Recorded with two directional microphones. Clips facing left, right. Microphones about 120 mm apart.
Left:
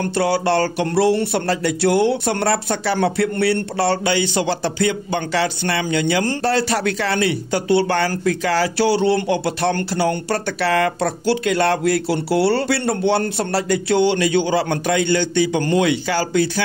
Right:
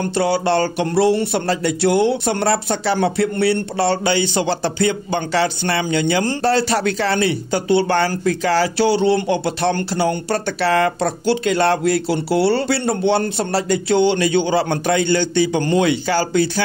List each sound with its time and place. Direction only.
0.1 s speech: 20° right (ahead or behind)